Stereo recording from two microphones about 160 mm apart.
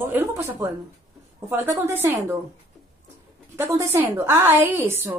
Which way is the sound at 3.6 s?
15° right (ahead or behind).